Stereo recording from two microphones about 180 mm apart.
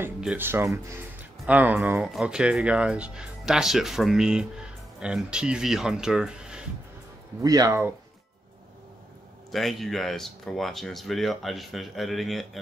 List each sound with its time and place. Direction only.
0.0 s speech: 10° right (ahead or behind)
7.4 s speech: 20° right (ahead or behind)
9.5 s speech: centre (ahead or behind)